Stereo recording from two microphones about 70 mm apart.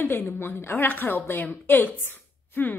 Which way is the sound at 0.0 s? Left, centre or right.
Left.